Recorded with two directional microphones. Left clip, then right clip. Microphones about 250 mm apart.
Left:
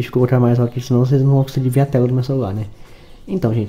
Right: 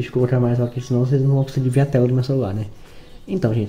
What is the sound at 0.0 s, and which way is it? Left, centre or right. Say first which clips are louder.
Speech: left 4 dB; left.